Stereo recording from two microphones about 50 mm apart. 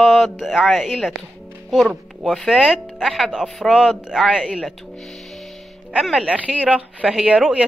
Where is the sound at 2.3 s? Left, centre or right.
Centre.